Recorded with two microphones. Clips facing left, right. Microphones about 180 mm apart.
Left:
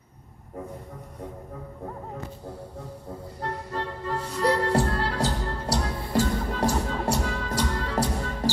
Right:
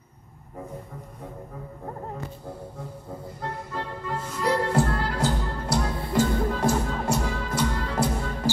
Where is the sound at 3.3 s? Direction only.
35° left (ahead or behind).